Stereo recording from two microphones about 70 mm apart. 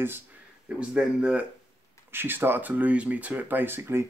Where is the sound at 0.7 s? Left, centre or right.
Centre.